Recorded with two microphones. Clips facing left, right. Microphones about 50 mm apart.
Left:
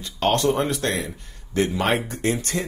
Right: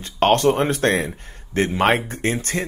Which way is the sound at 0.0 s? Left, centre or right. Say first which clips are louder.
Right 4 dB; right.